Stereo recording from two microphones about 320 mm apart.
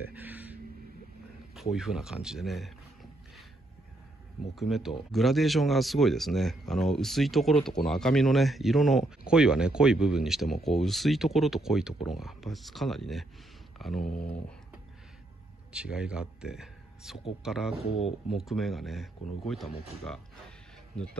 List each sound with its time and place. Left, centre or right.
0.1 s speech: centre
1.5 s a sound: centre
4.6 s speech: centre
15.7 s speech: centre
17.8 s speech: centre
18.3 s speech: centre
20.9 s speech: centre